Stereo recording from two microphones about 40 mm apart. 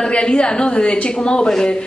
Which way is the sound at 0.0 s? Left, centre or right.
Left.